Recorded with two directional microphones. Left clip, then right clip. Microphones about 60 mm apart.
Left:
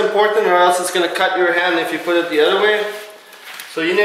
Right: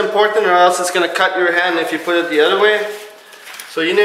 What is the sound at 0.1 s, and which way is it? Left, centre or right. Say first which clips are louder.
Speech: right 1 dB; right.